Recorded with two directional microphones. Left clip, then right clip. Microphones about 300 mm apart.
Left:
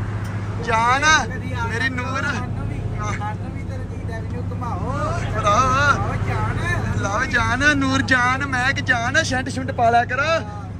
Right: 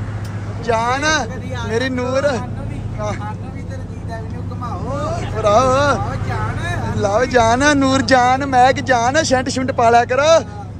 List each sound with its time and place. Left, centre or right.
0.7 s speech: centre
4.9 s speech: centre